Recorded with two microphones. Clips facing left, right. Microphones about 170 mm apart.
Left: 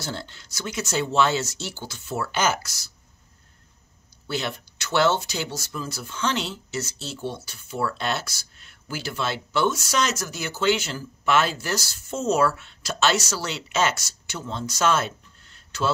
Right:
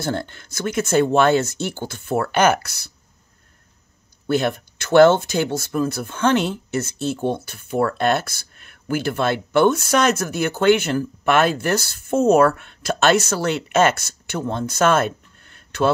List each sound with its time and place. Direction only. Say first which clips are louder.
0.0 s speech: right 9 dB; 55° right (ahead or behind)
4.3 s speech: right 9 dB; 50° right (ahead or behind)